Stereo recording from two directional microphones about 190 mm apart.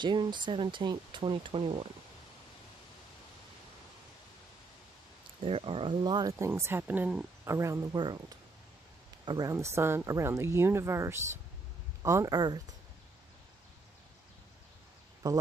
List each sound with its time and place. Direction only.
0.0 s speech: 25° right (ahead or behind)
5.4 s speech: 30° right (ahead or behind)
9.2 s speech: 20° right (ahead or behind)
15.2 s speech: 20° right (ahead or behind)